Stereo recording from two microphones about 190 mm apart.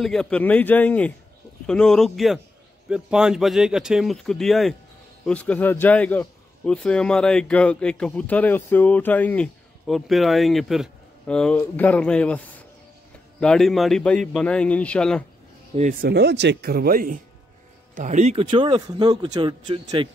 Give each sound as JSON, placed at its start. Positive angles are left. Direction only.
{"t": 0.0, "sound": "a man's voice", "side_deg": 5}
{"t": 15.7, "sound": "speech", "side_deg": -45}